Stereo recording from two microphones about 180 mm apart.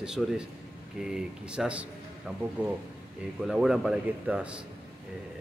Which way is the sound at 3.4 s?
5° right (ahead or behind).